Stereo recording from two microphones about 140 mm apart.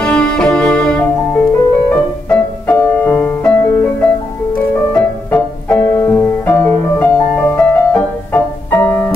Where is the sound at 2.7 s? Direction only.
15° left (ahead or behind).